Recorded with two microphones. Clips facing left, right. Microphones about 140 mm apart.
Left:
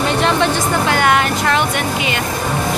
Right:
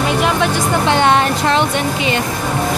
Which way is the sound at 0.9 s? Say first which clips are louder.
Right 3 dB; 25° right (ahead or behind).